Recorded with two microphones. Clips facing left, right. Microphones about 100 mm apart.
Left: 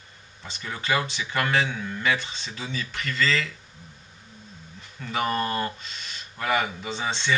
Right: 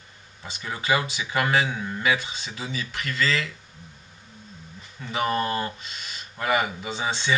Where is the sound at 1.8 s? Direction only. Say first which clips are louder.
Right 1 dB; 20° right (ahead or behind).